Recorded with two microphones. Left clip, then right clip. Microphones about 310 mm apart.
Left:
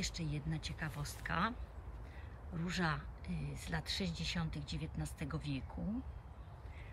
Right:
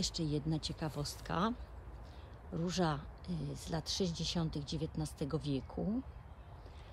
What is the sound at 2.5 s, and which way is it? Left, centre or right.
Speech, centre.